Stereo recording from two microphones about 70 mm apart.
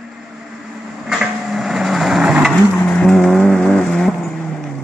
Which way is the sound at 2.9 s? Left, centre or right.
Centre.